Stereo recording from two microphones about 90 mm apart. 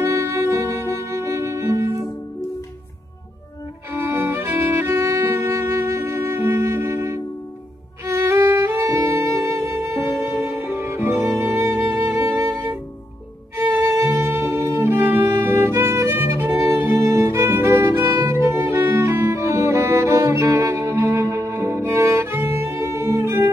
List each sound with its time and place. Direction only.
0.0 s music: 35° right (ahead or behind)
3.9 s music: 30° right (ahead or behind)